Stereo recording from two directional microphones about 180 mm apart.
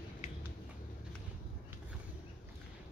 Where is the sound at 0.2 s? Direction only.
40° left (ahead or behind).